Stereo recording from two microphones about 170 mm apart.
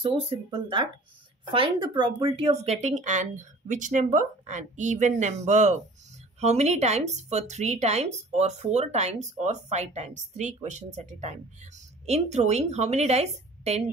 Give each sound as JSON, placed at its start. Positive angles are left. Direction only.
{"t": 0.0, "sound": "speech", "side_deg": -25}